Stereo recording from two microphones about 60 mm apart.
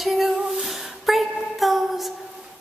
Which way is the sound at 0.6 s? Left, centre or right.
Centre.